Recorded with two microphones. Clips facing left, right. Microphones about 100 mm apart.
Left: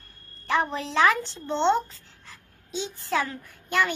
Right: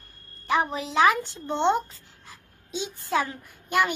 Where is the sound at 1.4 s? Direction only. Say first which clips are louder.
Left 1 dB; 15° right (ahead or behind).